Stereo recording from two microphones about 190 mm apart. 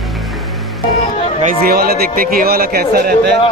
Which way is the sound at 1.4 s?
55° right (ahead or behind).